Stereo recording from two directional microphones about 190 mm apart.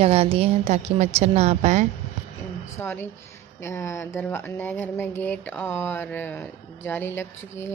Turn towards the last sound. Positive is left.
turn(degrees=10)  # may be behind; listen again after turning